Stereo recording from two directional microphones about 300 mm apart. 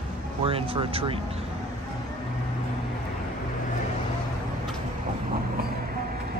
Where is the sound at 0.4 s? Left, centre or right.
Centre.